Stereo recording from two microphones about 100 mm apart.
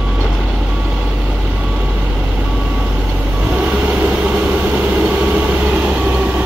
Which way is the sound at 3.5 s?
15° right (ahead or behind).